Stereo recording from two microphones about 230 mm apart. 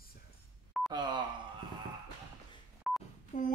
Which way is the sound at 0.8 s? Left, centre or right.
Centre.